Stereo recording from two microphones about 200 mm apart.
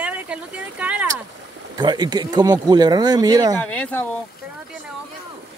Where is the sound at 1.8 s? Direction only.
20° right (ahead or behind).